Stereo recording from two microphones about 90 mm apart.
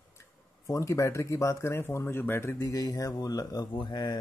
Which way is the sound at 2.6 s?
45° left (ahead or behind).